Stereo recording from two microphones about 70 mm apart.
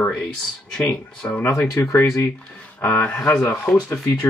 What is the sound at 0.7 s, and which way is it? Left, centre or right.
Speech, centre.